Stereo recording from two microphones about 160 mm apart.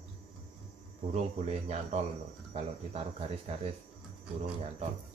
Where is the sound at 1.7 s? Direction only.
45° right (ahead or behind).